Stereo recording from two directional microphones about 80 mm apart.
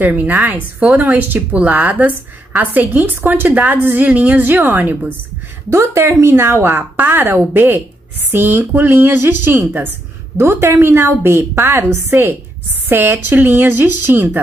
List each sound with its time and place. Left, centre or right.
0.0 s a woman's voice: centre
5.7 s a woman's voice: right